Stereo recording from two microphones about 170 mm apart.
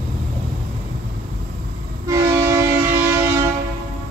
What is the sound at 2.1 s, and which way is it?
Train, 15° right (ahead or behind).